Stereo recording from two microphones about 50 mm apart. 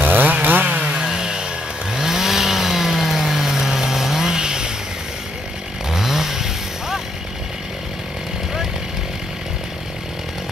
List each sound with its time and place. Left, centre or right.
0.0 s chainsaw: right
0.9 s a sound: centre
2.0 s chainsaw: centre
5.9 s vehicle: centre